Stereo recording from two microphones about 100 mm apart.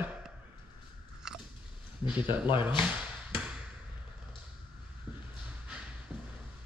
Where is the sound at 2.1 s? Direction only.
15° right (ahead or behind).